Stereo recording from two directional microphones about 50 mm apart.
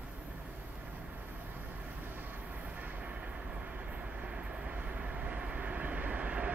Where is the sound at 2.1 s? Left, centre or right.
Right.